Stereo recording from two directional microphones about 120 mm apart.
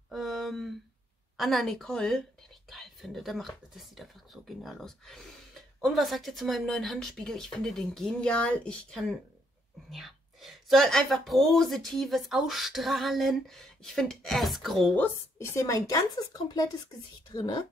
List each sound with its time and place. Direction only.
0.1 s a sound: centre (ahead or behind)
1.3 s speech: centre (ahead or behind)
15.0 s a woman's voice: 25° left (ahead or behind)